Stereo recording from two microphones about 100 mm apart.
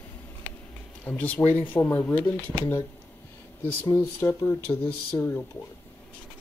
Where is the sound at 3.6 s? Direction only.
20° left (ahead or behind).